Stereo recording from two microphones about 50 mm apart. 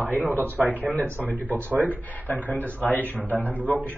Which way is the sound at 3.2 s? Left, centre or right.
Right.